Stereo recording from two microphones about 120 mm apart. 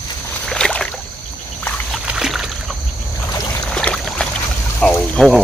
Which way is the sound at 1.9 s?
5° right (ahead or behind).